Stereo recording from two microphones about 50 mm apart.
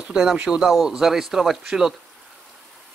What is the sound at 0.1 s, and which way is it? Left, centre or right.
Speech, centre.